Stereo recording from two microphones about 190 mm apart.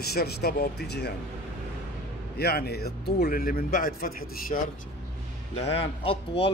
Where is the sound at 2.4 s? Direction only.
55° left (ahead or behind).